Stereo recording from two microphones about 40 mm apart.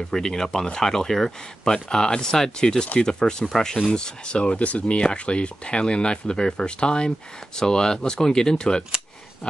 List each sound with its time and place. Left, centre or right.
0.1 s speech: centre